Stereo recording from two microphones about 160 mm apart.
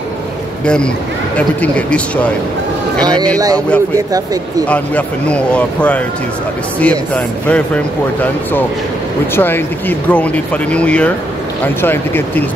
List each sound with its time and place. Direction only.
0.7 s speech: 5° left (ahead or behind)
3.5 s speech: 10° left (ahead or behind)
3.9 s speech: 20° right (ahead or behind)
4.6 s speech: 10° left (ahead or behind)